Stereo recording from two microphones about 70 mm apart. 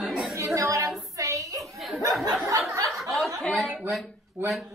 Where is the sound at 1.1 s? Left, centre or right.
Right.